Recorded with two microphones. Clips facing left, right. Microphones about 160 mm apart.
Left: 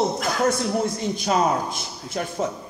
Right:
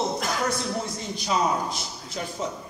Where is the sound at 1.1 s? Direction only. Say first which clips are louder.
Left 2 dB; 50° left (ahead or behind).